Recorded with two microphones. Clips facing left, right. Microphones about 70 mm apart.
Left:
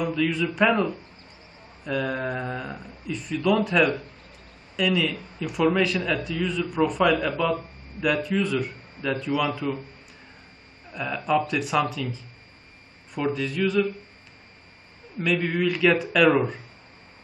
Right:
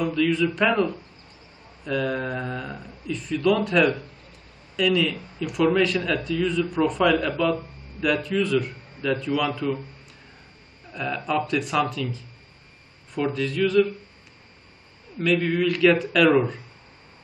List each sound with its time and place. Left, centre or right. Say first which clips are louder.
0.0 s a man's voice: right 3 dB; centre
10.9 s a man's voice: left 2 dB; centre
15.2 s a man's voice: right 2 dB; centre